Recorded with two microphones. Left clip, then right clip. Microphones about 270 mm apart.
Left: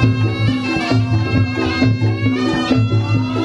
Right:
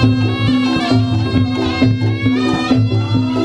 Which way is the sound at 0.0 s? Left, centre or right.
Right.